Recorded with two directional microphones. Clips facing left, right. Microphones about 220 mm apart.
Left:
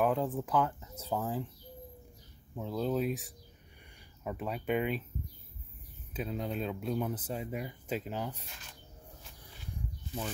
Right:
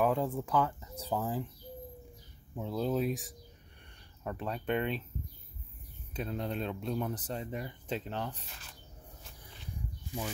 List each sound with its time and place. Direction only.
0.0 s speech: centre (ahead or behind)
2.5 s speech: centre (ahead or behind)
6.1 s speech: 5° left (ahead or behind)